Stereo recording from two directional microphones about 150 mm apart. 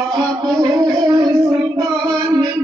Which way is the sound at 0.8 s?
25° right (ahead or behind).